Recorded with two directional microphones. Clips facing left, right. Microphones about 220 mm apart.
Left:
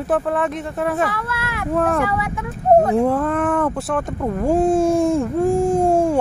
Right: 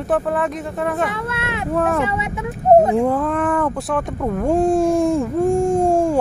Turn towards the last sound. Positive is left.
turn(degrees=0)  # may be behind; listen again after turning